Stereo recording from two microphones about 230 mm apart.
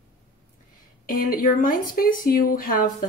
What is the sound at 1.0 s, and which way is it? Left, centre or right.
Speech, left.